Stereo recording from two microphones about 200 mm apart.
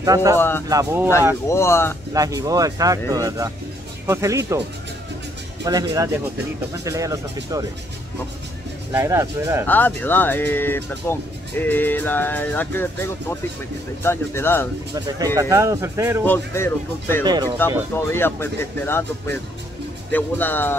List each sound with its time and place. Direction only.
0.0 s speech: 15° right (ahead or behind)
0.4 s speech: 10° left (ahead or behind)
0.7 s speech: 15° right (ahead or behind)
1.5 s speech: 15° left (ahead or behind)
2.1 s speech: 15° right (ahead or behind)
5.7 s speech: 15° right (ahead or behind)
8.9 s speech: 15° right (ahead or behind)
9.7 s speech: 10° left (ahead or behind)
15.0 s speech: 20° right (ahead or behind)
16.3 s speech: 10° left (ahead or behind)
17.2 s speech: 20° right (ahead or behind)
17.9 s speech: 10° left (ahead or behind)